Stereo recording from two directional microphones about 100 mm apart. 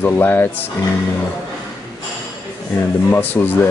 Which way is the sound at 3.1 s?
20° left (ahead or behind).